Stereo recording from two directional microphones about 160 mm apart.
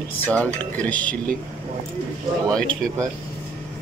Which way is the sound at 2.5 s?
5° left (ahead or behind).